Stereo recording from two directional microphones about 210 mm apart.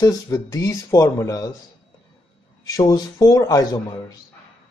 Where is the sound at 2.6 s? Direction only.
15° left (ahead or behind).